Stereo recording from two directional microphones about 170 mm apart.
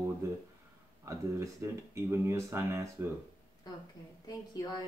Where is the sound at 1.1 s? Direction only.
15° right (ahead or behind).